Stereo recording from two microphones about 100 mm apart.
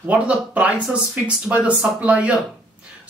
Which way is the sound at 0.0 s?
15° right (ahead or behind).